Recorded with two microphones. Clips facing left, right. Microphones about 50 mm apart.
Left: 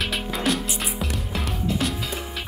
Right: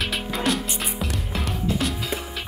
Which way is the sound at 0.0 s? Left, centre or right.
Centre.